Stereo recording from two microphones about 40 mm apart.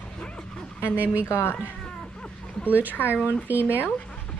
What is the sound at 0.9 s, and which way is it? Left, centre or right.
Speech, right.